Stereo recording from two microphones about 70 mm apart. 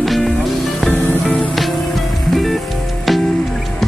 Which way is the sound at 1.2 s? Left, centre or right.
Centre.